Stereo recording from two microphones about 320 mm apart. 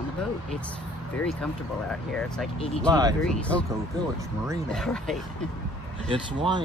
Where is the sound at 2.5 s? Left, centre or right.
Centre.